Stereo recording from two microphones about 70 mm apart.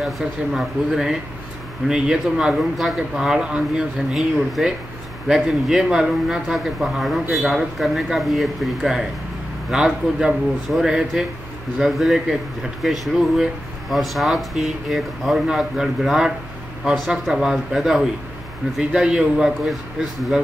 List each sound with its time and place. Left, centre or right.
0.0 s speech: centre
4.1 s speech: centre